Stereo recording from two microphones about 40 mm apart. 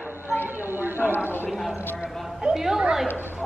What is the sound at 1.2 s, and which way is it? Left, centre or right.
Clip-clop, left.